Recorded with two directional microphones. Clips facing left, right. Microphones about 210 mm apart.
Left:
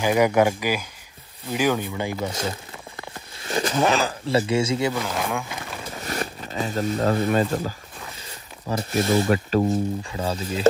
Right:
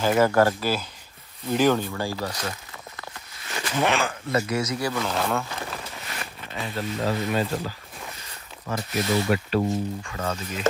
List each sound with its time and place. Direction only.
0.0 s speech: 15° left (ahead or behind)
3.4 s speech: 35° left (ahead or behind)
5.0 s speech: 10° left (ahead or behind)
6.0 s speech: 40° left (ahead or behind)
8.6 s rub: 45° left (ahead or behind)
10.0 s speech: 30° left (ahead or behind)